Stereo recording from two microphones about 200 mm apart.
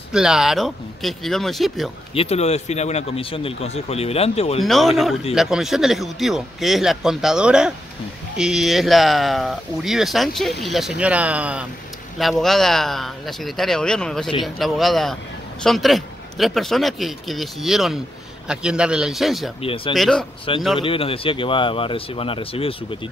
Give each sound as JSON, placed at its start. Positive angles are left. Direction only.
{"t": 0.1, "sound": "speech", "side_deg": -5}
{"t": 2.1, "sound": "speech", "side_deg": 30}
{"t": 4.6, "sound": "speech", "side_deg": 0}
{"t": 19.6, "sound": "speech", "side_deg": 25}
{"t": 19.9, "sound": "speech", "side_deg": 0}
{"t": 20.5, "sound": "speech", "side_deg": 25}